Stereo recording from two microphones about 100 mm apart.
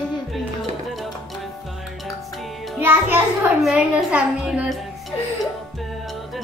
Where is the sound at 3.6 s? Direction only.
5° right (ahead or behind).